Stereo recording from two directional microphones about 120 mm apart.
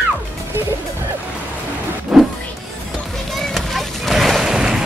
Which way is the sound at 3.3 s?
Centre (ahead or behind).